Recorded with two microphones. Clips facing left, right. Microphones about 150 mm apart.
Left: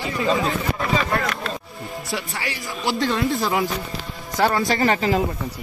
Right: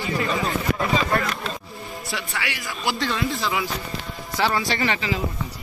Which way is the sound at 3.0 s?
45° left (ahead or behind).